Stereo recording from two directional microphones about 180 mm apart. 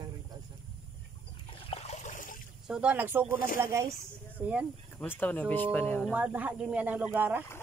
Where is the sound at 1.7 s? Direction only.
35° left (ahead or behind).